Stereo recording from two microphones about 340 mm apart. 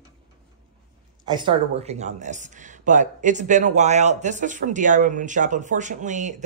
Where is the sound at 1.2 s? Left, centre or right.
Centre.